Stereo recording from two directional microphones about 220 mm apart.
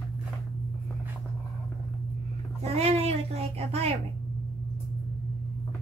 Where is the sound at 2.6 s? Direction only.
30° right (ahead or behind).